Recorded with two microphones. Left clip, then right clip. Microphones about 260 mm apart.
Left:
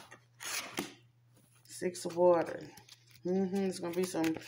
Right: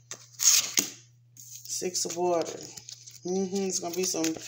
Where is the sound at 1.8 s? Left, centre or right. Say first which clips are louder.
Even; left.